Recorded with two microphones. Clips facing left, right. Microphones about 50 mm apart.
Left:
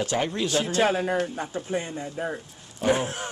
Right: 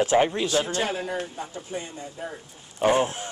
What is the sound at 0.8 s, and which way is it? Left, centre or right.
Speech, left.